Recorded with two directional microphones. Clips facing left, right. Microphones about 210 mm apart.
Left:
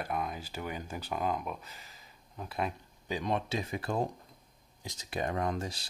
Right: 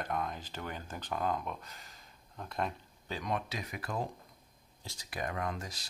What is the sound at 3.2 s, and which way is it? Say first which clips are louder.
Speech: left 4 dB; 25° left (ahead or behind).